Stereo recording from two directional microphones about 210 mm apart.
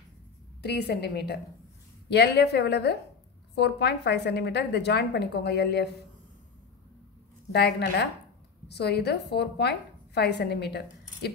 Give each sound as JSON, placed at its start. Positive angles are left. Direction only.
{"t": 0.6, "sound": "a woman's voice", "side_deg": 50}
{"t": 7.5, "sound": "a woman's voice", "side_deg": 50}